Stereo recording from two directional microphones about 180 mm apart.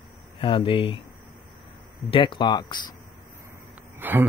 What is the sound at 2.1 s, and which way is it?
Speech, 25° left (ahead or behind).